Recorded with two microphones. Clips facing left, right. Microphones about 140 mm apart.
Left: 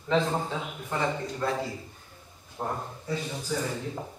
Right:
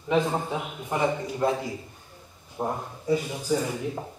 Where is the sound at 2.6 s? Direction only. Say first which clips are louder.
Right 3 dB; 15° right (ahead or behind).